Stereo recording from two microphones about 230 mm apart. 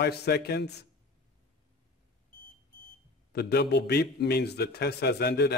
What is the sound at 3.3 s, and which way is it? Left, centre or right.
A man's voice, left.